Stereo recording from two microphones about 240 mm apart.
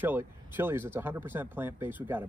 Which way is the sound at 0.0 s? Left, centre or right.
Centre.